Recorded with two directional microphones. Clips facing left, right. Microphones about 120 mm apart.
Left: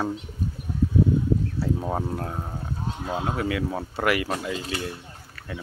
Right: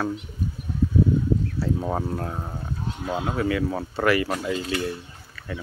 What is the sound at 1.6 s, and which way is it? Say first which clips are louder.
Speech: right 1 dB; centre (ahead or behind).